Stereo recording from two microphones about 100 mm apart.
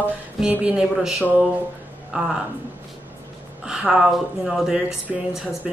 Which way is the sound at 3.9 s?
5° right (ahead or behind).